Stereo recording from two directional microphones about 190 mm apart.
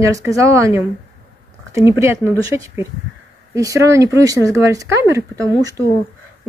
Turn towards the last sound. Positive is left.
turn(degrees=-15)  # may be behind; listen again after turning